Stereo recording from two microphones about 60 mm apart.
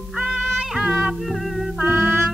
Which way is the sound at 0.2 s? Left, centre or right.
Centre.